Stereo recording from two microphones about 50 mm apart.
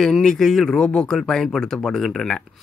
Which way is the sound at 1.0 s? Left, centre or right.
Centre.